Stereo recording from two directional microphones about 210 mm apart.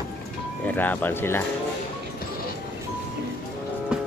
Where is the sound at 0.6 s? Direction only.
10° left (ahead or behind).